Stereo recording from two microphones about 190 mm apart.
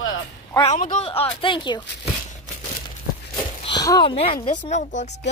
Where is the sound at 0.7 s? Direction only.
40° left (ahead or behind); by 1.8 s 25° left (ahead or behind).